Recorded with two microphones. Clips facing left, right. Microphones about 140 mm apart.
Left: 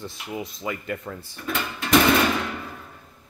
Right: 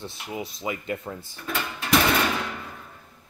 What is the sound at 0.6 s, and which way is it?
Speech, 20° right (ahead or behind).